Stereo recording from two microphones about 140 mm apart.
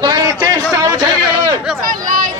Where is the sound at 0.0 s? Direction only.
25° right (ahead or behind).